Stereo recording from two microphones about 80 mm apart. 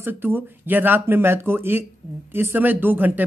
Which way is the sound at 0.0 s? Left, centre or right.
Right.